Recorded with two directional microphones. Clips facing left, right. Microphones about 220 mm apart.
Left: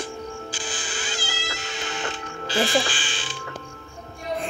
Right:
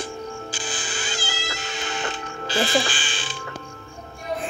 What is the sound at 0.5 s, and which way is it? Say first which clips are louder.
Cat: right 1 dB; 45° right (ahead or behind).